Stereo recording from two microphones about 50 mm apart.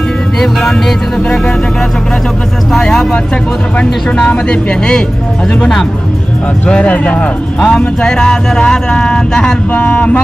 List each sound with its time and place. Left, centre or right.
0.4 s music: centre
2.7 s speech: centre
4.2 s speech: left
6.6 s speech: left
9.7 s speech: left